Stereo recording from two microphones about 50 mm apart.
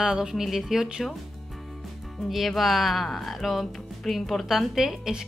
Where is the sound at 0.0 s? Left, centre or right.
Centre.